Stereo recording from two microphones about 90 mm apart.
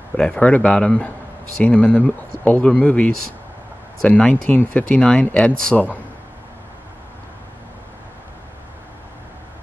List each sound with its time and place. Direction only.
0.2 s speech: 15° left (ahead or behind)
4.1 s speech: 15° left (ahead or behind)